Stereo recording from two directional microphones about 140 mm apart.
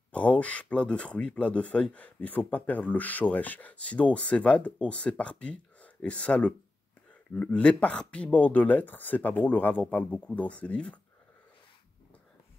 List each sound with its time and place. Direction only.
0.1 s speech: 10° left (ahead or behind)